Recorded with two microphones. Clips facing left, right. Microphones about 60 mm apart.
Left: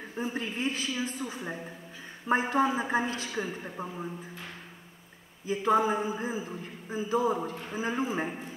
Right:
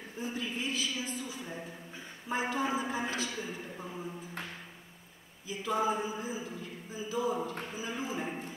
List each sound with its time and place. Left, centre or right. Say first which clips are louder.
0.2 s a man's voice: left 5 dB; left
5.5 s a man's voice: left 6 dB; left